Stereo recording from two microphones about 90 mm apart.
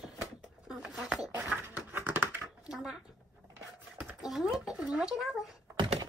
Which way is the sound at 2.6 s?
10° right (ahead or behind).